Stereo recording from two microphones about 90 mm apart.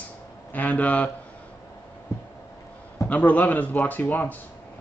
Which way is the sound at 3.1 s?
15° left (ahead or behind).